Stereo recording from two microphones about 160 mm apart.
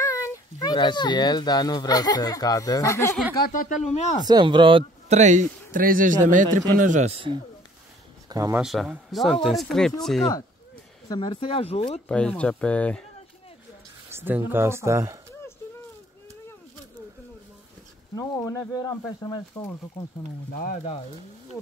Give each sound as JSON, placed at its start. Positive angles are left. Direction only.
{"t": 0.0, "sound": "speech", "side_deg": 20}
{"t": 3.4, "sound": "speech", "side_deg": 55}
{"t": 4.3, "sound": "speech", "side_deg": -30}
{"t": 5.1, "sound": "speech", "side_deg": -50}
{"t": 8.3, "sound": "speech", "side_deg": -20}
{"t": 8.5, "sound": "speech", "side_deg": -5}
{"t": 11.1, "sound": "speech", "side_deg": 30}
{"t": 12.1, "sound": "speech", "side_deg": 5}
{"t": 14.1, "sound": "speech", "side_deg": -10}
{"t": 18.1, "sound": "speech", "side_deg": 20}
{"t": 20.5, "sound": "speech", "side_deg": 55}